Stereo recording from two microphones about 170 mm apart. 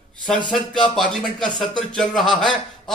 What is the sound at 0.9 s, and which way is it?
Speech, 5° left (ahead or behind).